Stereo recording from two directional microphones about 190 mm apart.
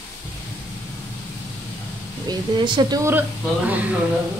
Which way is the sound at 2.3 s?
25° right (ahead or behind).